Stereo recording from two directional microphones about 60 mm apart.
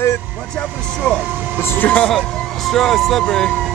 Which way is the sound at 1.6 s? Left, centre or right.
Left.